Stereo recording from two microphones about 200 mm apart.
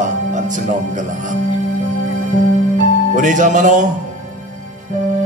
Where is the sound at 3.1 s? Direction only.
40° right (ahead or behind).